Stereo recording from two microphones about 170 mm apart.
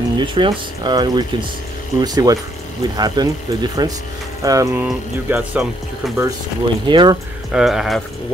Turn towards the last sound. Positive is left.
turn(degrees=0)  # may be behind; listen again after turning